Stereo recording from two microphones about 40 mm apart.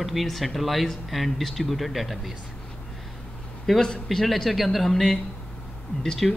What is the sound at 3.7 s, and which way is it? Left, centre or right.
Speech, centre.